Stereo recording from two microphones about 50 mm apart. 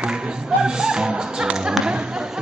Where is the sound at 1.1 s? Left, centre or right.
Centre.